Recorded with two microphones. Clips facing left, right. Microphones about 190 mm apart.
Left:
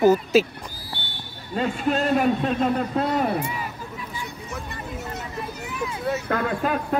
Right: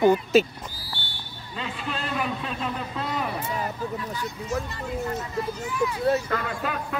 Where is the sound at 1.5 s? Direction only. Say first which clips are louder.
Left 10 dB; 45° left (ahead or behind).